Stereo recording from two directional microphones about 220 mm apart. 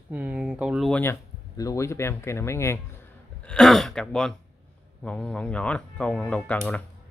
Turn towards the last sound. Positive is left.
turn(degrees=5)  # may be behind; listen again after turning